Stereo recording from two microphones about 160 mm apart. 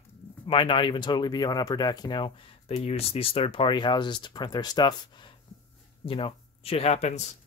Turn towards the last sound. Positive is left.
turn(degrees=45)  # may be behind; listen again after turning